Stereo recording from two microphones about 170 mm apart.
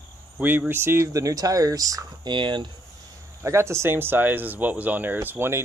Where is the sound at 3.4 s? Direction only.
15° right (ahead or behind).